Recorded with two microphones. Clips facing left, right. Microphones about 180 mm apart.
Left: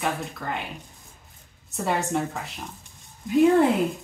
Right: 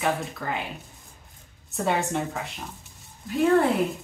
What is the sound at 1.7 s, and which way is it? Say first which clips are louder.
Speech: even; centre (ahead or behind).